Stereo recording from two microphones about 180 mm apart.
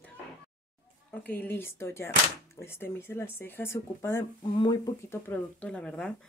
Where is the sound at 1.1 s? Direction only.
10° left (ahead or behind).